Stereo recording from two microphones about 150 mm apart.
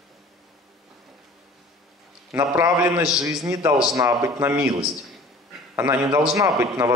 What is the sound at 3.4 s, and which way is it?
A man's voice, 15° right (ahead or behind).